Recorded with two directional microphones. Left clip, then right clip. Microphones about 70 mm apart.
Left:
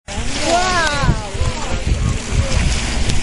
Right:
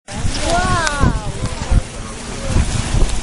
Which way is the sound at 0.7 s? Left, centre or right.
Left.